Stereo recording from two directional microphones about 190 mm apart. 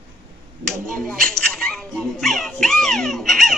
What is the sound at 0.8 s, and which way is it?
Speech, 5° left (ahead or behind).